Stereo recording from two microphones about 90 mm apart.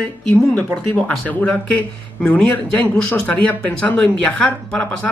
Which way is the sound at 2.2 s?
15° left (ahead or behind).